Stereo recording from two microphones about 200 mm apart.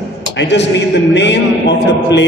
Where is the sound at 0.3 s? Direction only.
60° left (ahead or behind).